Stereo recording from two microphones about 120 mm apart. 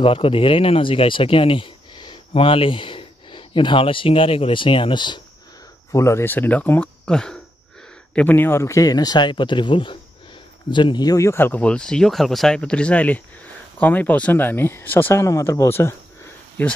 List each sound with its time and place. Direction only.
0.0 s speech: 50° left (ahead or behind)
5.9 s speech: 25° left (ahead or behind)
16.6 s speech: 15° left (ahead or behind)